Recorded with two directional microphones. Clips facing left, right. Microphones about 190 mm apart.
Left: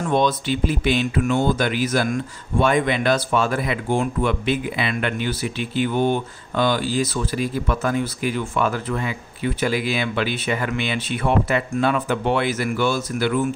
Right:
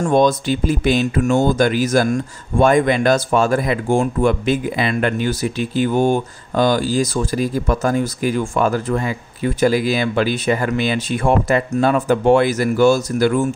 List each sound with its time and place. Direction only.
0.0 s speech: 45° right (ahead or behind)